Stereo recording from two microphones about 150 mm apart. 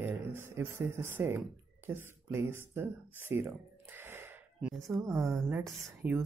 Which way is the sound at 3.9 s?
15° right (ahead or behind).